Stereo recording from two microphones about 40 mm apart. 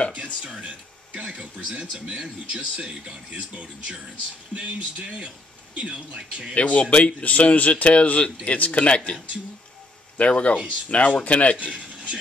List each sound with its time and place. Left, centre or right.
0.1 s a sound: right
1.2 s speech: right
6.5 s a man's voice: left
11.5 s speech: right